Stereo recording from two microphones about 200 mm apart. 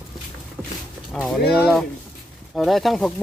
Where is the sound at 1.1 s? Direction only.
Centre (ahead or behind).